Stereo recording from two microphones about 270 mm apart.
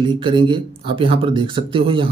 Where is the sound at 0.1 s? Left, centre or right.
Centre.